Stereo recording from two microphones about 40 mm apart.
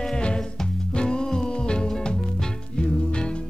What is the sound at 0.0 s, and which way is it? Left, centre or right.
Music, left.